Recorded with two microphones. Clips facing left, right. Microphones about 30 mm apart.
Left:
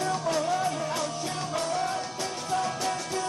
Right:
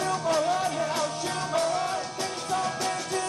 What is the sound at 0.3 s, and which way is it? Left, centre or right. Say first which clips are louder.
Music: right 3 dB; centre.